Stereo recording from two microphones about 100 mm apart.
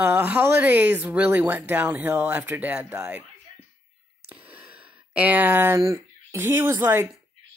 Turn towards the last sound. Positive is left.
turn(degrees=-25)  # may be behind; listen again after turning